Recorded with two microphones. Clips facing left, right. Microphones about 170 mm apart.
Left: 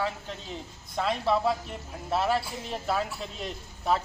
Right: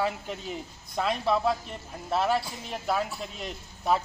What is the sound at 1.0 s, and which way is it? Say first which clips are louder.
A man's voice: even; centre (ahead or behind).